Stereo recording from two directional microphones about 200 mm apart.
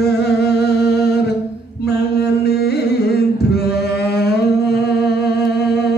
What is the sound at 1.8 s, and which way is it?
Singing, 55° left (ahead or behind).